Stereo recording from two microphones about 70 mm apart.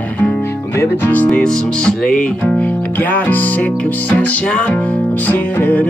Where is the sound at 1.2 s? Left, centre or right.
Centre.